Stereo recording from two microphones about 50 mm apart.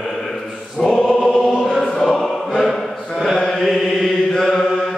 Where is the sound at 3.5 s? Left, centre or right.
Centre.